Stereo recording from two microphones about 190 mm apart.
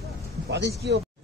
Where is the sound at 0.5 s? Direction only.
65° right (ahead or behind).